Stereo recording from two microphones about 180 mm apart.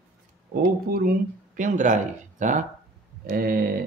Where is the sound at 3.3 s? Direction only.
55° right (ahead or behind).